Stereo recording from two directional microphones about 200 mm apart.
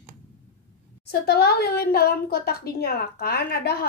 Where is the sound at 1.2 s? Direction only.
50° left (ahead or behind).